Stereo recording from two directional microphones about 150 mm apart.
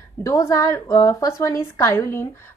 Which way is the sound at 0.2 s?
20° left (ahead or behind).